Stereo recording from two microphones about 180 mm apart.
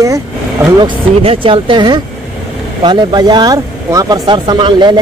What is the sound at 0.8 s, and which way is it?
Speech, 30° right (ahead or behind).